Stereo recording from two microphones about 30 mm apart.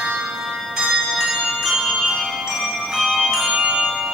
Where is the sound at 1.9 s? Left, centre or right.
Centre.